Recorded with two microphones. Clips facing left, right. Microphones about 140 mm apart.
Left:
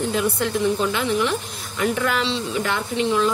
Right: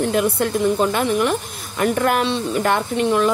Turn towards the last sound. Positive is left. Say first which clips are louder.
# right 3 dB
turn(degrees=-55)  # may be behind; listen again after turning